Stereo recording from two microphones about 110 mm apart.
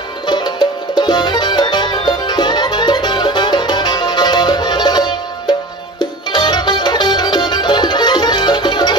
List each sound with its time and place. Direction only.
0.3 s music: 40° left (ahead or behind)